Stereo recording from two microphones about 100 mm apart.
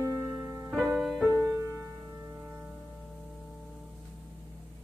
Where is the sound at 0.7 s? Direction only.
5° right (ahead or behind).